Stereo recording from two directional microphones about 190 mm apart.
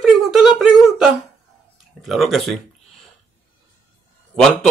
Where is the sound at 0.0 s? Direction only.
Centre (ahead or behind).